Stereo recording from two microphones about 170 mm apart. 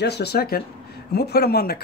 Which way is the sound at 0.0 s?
75° left (ahead or behind).